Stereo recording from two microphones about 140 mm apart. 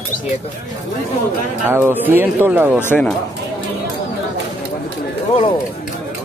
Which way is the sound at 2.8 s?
15° left (ahead or behind).